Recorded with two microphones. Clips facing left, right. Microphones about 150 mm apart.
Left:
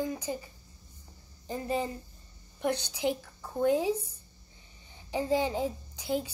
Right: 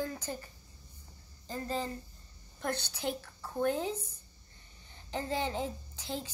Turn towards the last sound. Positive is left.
turn(degrees=10)  # may be behind; listen again after turning